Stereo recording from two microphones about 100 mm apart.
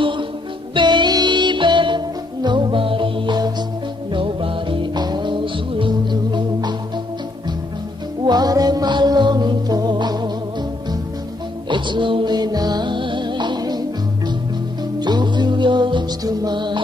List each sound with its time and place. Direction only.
0.7 s music: 50° right (ahead or behind)
4.1 s music: 60° right (ahead or behind)
8.3 s music: 40° right (ahead or behind)
11.7 s music: 55° right (ahead or behind)
15.0 s music: 45° right (ahead or behind)